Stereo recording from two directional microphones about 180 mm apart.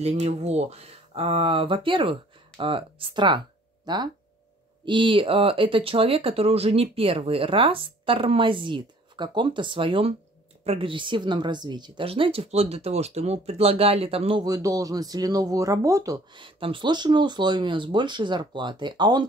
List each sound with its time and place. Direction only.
0.0 s speech: 35° right (ahead or behind)
14.4 s speech: 20° right (ahead or behind)